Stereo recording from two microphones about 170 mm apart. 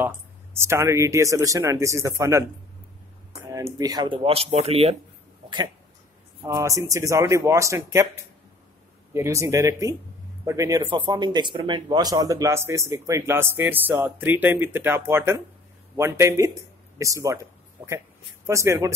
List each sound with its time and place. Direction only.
0.0 s speech: 15° right (ahead or behind)
3.7 s speech: 25° right (ahead or behind)
6.4 s speech: 20° right (ahead or behind)
9.1 s speech: 15° right (ahead or behind)